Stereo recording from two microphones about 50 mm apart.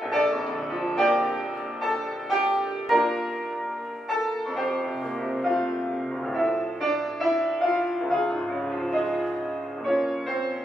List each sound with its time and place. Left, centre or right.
0.1 s music: centre